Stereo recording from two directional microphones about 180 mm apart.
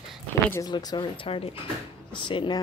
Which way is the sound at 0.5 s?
20° left (ahead or behind).